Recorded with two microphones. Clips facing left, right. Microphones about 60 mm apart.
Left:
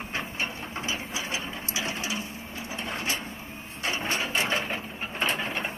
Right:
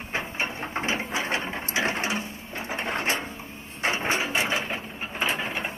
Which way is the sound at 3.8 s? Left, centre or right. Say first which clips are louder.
Right 4 dB; right.